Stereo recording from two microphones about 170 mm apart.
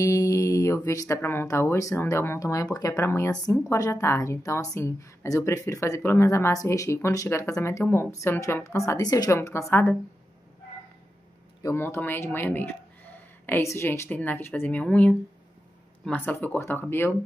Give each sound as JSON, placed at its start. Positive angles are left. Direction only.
{"t": 0.0, "sound": "a woman's voice", "side_deg": 20}
{"t": 11.6, "sound": "a woman's voice", "side_deg": 15}